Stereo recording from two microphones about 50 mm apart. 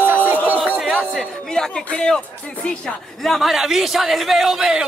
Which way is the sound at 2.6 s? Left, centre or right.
Left.